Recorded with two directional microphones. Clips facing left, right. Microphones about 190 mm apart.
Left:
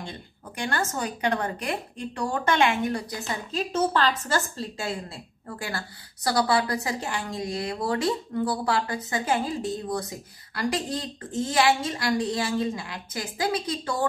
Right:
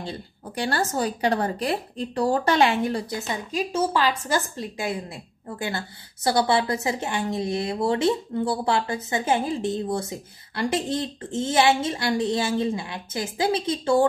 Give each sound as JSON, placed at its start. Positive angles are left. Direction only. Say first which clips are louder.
{"t": 0.0, "sound": "a woman's voice", "louder": "right 5 dB", "side_deg": -30}